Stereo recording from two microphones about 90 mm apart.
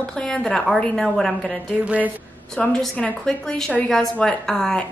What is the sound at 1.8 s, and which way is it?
Speech, 15° right (ahead or behind).